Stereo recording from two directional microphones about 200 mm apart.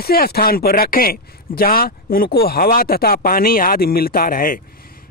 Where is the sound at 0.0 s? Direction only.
50° left (ahead or behind).